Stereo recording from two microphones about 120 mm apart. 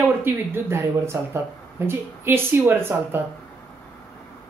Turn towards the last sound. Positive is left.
turn(degrees=-20)  # may be behind; listen again after turning